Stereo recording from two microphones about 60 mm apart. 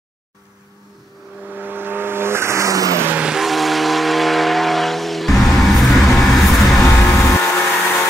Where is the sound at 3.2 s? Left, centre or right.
Centre.